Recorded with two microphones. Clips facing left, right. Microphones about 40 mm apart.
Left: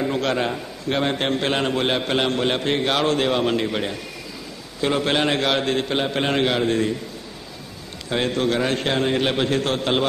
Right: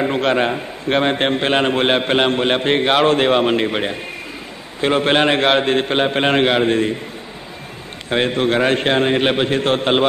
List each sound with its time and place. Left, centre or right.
0.0 s a man's voice: right
8.1 s a man's voice: right